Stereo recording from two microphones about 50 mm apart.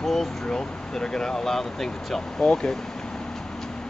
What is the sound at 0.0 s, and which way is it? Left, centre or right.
Speech, centre.